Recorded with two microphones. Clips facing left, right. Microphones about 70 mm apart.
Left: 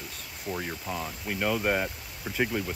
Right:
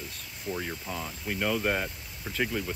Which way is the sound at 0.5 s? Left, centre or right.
Centre.